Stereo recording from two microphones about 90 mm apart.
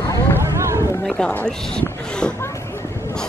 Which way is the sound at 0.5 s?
30° right (ahead or behind).